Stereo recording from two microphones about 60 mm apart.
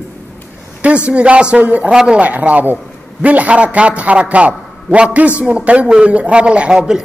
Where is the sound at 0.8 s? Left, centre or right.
Right.